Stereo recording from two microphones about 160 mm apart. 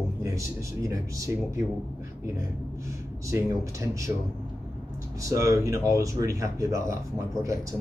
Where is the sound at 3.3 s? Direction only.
15° right (ahead or behind).